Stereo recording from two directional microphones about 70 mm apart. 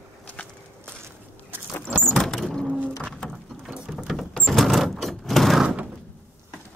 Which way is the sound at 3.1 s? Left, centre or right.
Centre.